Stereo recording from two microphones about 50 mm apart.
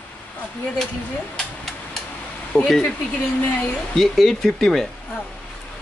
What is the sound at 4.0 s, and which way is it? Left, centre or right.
Speech, centre.